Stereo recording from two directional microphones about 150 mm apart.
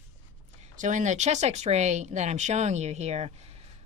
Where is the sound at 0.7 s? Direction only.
55° right (ahead or behind).